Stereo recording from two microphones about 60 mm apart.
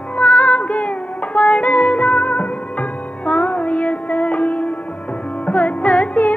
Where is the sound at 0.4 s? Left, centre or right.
Left.